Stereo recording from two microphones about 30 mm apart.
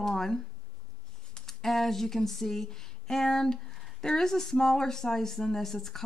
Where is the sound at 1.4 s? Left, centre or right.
Centre.